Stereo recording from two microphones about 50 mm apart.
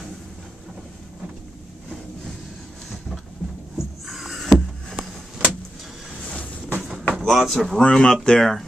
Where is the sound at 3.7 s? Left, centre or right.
Centre.